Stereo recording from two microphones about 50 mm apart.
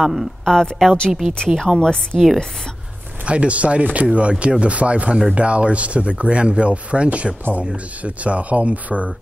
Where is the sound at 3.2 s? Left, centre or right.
Right.